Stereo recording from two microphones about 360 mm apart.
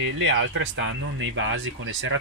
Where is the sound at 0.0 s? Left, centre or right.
Right.